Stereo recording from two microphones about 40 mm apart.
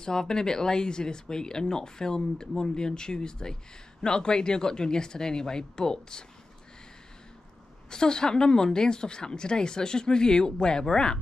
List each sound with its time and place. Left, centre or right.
0.0 s a woman's voice: centre
7.9 s a woman's voice: centre